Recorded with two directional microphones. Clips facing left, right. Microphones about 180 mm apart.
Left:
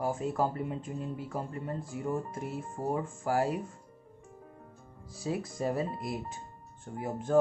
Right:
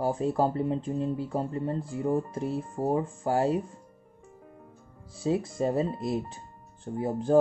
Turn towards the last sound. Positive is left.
turn(degrees=-30)  # may be behind; listen again after turning